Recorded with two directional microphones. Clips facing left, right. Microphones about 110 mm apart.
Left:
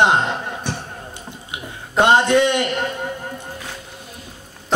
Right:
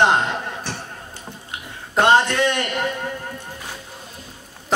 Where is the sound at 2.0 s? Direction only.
15° left (ahead or behind).